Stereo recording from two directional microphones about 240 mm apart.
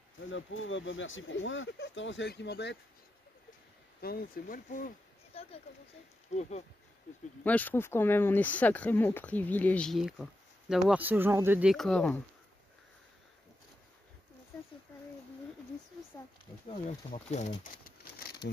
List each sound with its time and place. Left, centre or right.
0.3 s speech: left
4.0 s speech: left
7.4 s speech: centre
16.1 s speech: centre
17.1 s speech: left